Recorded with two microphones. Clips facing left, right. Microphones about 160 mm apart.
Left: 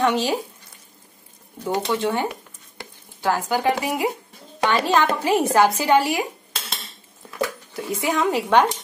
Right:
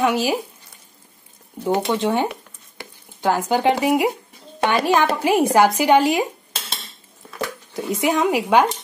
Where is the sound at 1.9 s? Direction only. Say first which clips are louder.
Right 2 dB; 20° right (ahead or behind).